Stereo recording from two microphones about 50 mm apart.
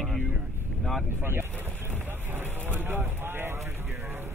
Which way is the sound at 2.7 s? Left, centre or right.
Right.